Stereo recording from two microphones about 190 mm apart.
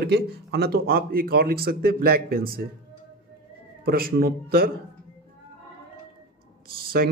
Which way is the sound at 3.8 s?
55° right (ahead or behind).